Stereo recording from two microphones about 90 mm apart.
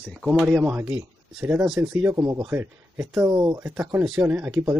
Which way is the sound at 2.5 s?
25° right (ahead or behind).